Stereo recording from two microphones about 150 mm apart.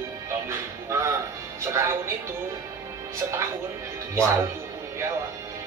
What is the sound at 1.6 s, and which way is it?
Speech, 20° right (ahead or behind).